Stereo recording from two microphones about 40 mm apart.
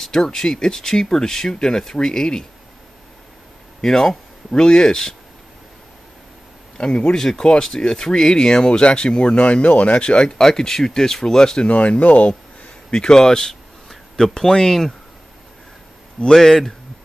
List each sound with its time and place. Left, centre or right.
0.0 s speech: centre
3.8 s speech: centre
6.8 s speech: left
11.6 s speech: left
12.9 s speech: centre
16.3 s speech: centre